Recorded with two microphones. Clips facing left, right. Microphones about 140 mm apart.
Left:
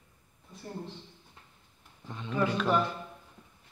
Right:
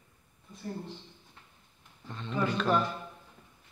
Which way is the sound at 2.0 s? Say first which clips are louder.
Left 1 dB; 10° left (ahead or behind).